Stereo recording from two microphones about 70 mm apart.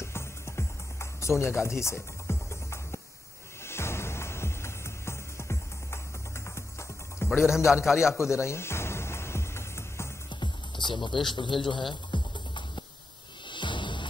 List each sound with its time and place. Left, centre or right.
0.0 s music: left
7.2 s a man's voice: centre
8.2 s music: left
10.3 s music: left
11.0 s a man's voice: centre
12.1 s music: left